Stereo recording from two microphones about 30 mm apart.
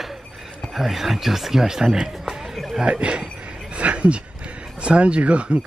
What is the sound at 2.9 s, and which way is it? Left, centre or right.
Speech, right.